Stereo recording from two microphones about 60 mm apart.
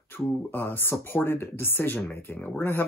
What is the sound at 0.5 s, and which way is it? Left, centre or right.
Speech, left.